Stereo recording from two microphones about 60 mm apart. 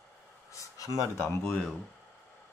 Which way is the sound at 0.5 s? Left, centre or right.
Left.